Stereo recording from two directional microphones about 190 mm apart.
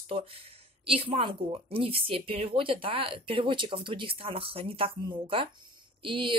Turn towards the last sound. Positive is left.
turn(degrees=-25)  # may be behind; listen again after turning